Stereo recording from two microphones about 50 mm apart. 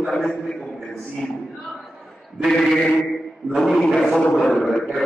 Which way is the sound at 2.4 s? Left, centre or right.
Centre.